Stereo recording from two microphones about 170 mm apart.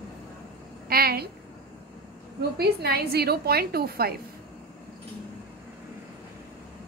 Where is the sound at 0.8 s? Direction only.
65° right (ahead or behind).